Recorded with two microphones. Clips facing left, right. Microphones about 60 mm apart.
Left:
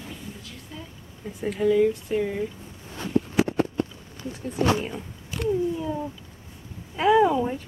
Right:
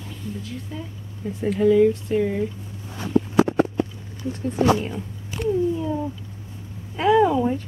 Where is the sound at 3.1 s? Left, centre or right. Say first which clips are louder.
Right 4 dB; right.